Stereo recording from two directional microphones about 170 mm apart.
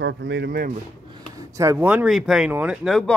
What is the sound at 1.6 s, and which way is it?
Speech, 15° right (ahead or behind).